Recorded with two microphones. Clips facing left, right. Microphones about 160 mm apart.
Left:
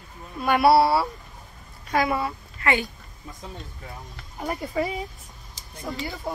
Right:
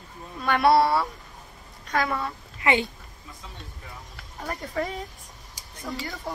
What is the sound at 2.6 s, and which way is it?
Speech, 20° right (ahead or behind).